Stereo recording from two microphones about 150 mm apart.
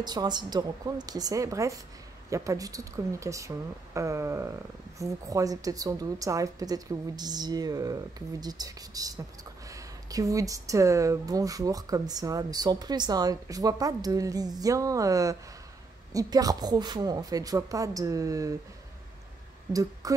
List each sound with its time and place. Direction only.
0.0 s speech: 30° right (ahead or behind)
19.7 s speech: 25° right (ahead or behind)